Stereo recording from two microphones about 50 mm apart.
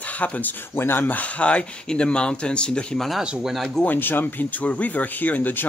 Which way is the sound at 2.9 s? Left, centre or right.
Centre.